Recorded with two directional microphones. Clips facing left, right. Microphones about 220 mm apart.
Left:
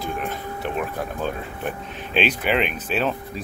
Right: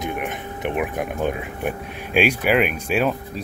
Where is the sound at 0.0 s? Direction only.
20° right (ahead or behind).